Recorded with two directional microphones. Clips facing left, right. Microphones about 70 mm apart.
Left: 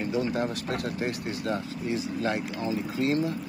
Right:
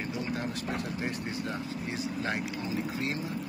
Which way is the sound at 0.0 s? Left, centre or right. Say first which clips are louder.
Left 6 dB; left.